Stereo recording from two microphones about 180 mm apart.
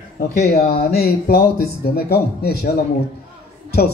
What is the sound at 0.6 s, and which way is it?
Speech, 60° left (ahead or behind).